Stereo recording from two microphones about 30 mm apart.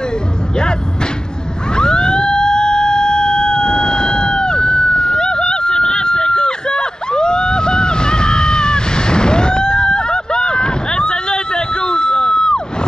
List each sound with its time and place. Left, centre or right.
1.8 s emergency vehicle: left